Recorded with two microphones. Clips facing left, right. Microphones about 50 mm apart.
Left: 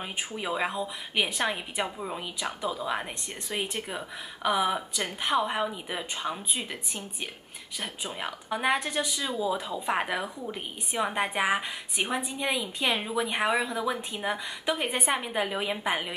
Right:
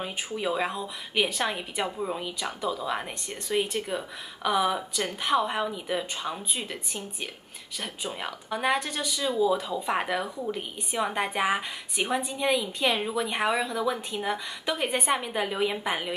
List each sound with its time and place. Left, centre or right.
0.4 s speech: centre
2.2 s speech: centre
7.8 s speech: centre